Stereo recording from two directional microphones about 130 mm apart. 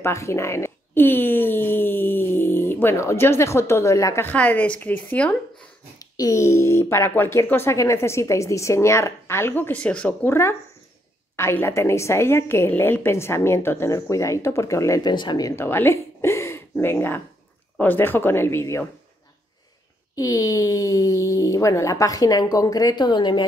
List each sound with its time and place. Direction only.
0.0 s speech: 20° left (ahead or behind)
5.9 s speech: 30° left (ahead or behind)
15.5 s speech: 15° left (ahead or behind)
20.2 s speech: 30° left (ahead or behind)